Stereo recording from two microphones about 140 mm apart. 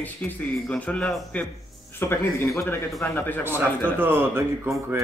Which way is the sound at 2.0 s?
20° left (ahead or behind).